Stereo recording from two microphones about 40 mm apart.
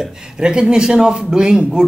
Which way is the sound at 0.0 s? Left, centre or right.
Right.